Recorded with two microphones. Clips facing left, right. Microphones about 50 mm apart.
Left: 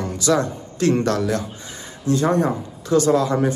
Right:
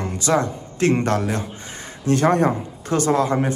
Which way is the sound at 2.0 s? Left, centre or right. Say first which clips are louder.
Right 1 dB; right.